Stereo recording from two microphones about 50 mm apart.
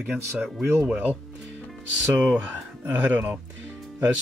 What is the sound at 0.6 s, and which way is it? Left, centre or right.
Speech, right.